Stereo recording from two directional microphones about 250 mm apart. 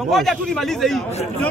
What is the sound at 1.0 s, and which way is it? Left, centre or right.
Speech, left.